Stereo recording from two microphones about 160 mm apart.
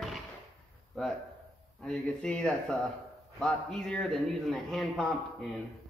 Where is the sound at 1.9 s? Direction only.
5° left (ahead or behind).